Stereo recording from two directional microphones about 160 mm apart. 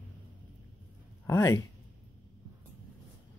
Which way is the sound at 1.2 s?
20° left (ahead or behind).